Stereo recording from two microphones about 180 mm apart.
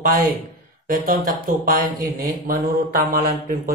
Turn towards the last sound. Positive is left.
turn(degrees=-55)  # may be behind; listen again after turning